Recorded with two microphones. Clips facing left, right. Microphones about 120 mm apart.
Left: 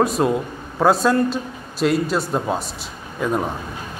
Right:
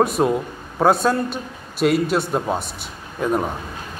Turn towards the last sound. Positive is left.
turn(degrees=0)  # may be behind; listen again after turning